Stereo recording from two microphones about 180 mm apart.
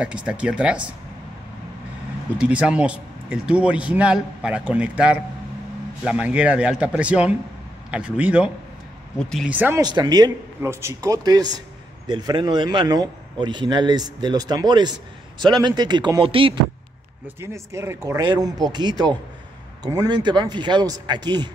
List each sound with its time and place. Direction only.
0.0 s speech: 5° right (ahead or behind)
2.3 s speech: 5° right (ahead or behind)
9.6 s speech: 10° right (ahead or behind)
9.8 s a man's voice: 25° right (ahead or behind)
17.4 s a man's voice: 15° right (ahead or behind)